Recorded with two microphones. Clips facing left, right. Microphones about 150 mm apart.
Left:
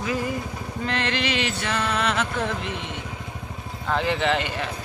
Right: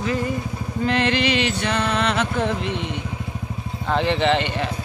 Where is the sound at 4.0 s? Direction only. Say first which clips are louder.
Right 4 dB; centre (ahead or behind).